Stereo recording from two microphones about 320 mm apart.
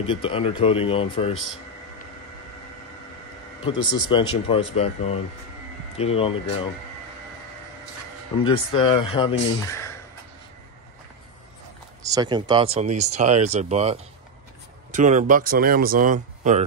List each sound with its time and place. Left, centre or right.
0.0 s speech: centre
3.6 s speech: centre
5.9 s speech: centre
8.5 s speech: centre
12.0 s speech: centre